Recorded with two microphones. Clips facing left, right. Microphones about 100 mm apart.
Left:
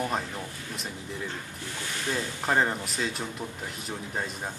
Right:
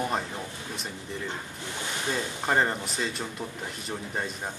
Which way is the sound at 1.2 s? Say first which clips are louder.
Right 1 dB; 20° right (ahead or behind).